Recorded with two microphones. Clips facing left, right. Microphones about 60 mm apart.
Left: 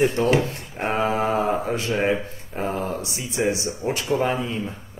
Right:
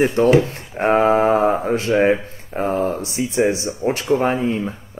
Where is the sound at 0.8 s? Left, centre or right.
Right.